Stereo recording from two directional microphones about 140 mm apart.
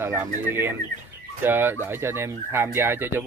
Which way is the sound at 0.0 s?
15° right (ahead or behind).